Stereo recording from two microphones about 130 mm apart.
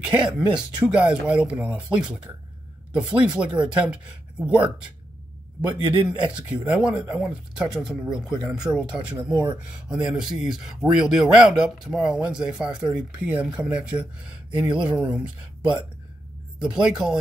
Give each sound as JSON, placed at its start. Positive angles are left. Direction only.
{"t": 0.0, "sound": "a man's voice", "side_deg": -10}
{"t": 6.0, "sound": "a man's voice", "side_deg": -10}
{"t": 9.3, "sound": "speech", "side_deg": -30}
{"t": 9.8, "sound": "a man's voice", "side_deg": -10}